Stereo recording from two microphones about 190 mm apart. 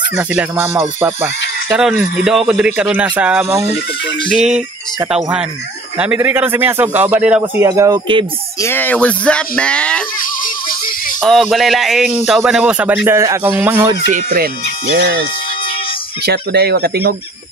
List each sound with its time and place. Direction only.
0.2 s a man's voice: 10° right (ahead or behind)
5.9 s a man's voice: 10° right (ahead or behind)
8.5 s speech: 10° left (ahead or behind)
10.4 s rattle: 45° left (ahead or behind)
11.1 s a man's voice: centre (ahead or behind)
14.1 s speech: 50° right (ahead or behind)
16.3 s speech: 55° right (ahead or behind)